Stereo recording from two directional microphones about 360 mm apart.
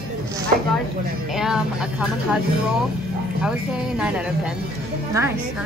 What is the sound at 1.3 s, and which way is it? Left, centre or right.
Speech, centre.